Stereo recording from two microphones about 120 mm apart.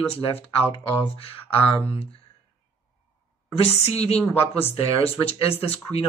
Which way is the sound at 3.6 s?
60° left (ahead or behind).